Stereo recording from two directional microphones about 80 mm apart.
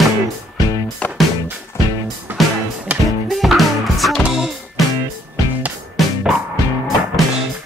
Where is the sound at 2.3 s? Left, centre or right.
Right.